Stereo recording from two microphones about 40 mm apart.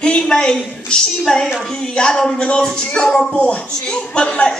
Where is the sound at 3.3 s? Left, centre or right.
Left.